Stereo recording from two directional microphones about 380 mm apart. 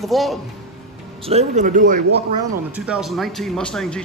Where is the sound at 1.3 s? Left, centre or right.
Centre.